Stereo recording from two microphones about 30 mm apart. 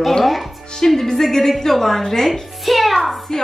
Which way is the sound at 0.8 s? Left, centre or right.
Centre.